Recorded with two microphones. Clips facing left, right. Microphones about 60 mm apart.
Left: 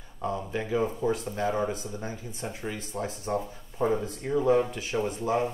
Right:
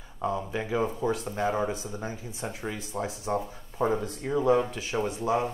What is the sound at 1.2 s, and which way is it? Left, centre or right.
Speech, right.